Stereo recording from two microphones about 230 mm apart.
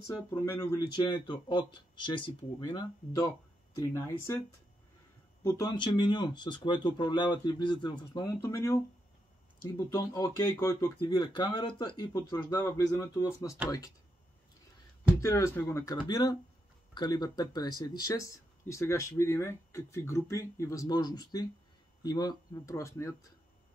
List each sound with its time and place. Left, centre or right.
0.1 s speech: centre
5.4 s speech: centre
15.1 s speech: centre